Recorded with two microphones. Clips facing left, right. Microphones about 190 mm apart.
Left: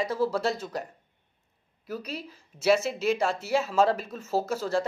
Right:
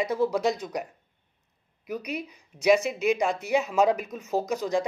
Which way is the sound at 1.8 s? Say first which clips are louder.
Right 3 dB; 15° right (ahead or behind).